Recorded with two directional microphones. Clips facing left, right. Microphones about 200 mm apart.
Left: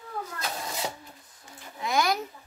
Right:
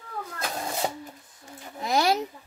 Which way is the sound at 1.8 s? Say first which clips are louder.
Right 3 dB; 35° right (ahead or behind).